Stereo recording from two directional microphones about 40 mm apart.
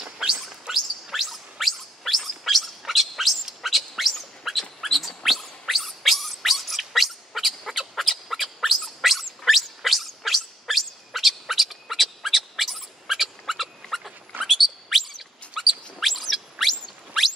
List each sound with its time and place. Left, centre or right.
0.5 s music: centre
3.6 s a sound: centre
15.5 s squeak: centre